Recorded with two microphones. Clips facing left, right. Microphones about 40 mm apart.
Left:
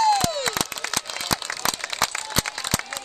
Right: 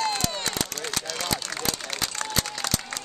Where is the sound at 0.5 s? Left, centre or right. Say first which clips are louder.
Left 3 dB; left.